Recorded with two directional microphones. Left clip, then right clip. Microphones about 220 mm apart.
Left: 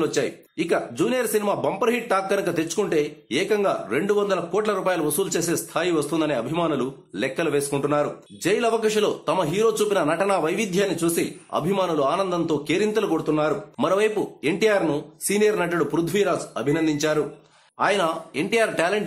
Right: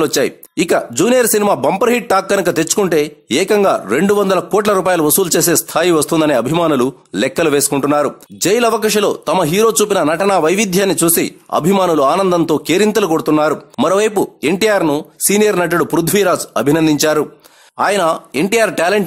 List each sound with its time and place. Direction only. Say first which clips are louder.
0.0 s speech: right 9 dB; 45° right (ahead or behind)